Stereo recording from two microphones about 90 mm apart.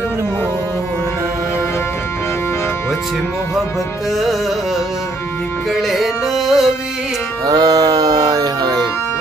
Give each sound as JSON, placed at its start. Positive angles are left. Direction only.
{"t": 5.7, "sound": "music", "side_deg": 0}
{"t": 7.4, "sound": "music", "side_deg": -45}